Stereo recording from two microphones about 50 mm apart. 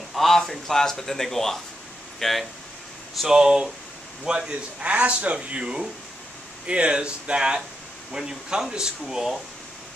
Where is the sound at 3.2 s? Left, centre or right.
Centre.